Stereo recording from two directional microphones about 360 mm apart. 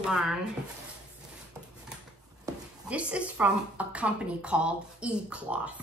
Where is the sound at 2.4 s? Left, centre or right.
Centre.